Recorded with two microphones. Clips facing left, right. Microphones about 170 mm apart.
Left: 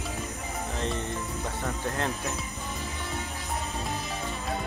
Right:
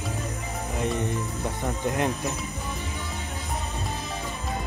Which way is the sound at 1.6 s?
15° right (ahead or behind).